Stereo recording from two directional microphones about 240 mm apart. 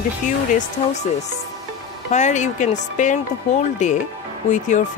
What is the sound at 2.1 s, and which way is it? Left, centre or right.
Speech, left.